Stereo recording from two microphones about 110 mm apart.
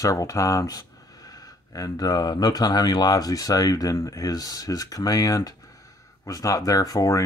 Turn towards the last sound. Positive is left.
turn(degrees=30)  # may be behind; listen again after turning